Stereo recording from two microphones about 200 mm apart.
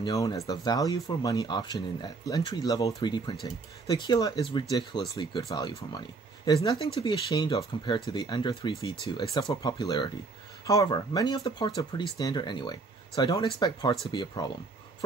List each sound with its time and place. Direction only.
0.0 s speech: 20° left (ahead or behind)